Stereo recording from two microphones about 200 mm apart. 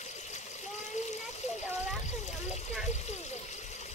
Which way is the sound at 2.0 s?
35° left (ahead or behind).